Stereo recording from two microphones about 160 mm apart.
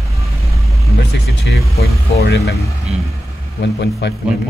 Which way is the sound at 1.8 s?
80° left.